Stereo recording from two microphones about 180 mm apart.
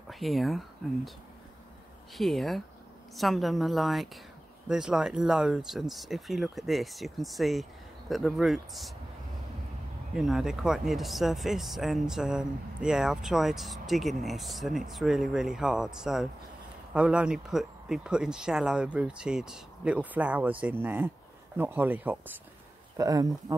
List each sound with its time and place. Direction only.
0.1 s speech: centre (ahead or behind)
2.1 s speech: centre (ahead or behind)
10.1 s speech: centre (ahead or behind); by 23.3 s 20° right (ahead or behind)